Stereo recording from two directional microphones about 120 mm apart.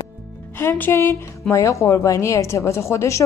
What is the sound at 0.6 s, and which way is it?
A woman's voice, 20° left (ahead or behind).